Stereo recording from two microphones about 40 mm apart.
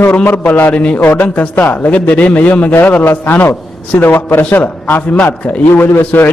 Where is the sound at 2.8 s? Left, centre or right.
Left.